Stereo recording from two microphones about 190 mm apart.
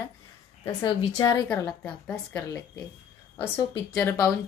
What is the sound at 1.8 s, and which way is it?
Speech, 5° left (ahead or behind).